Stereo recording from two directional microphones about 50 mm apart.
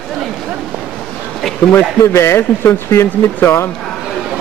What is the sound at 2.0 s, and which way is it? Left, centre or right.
Speech, left.